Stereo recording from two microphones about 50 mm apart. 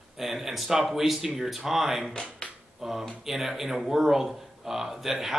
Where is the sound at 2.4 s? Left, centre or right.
Left.